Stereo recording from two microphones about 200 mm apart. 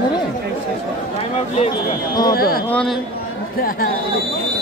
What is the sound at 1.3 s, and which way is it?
Speech, 30° left (ahead or behind).